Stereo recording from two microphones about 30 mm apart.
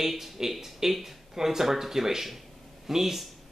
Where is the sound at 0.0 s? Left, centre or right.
Centre.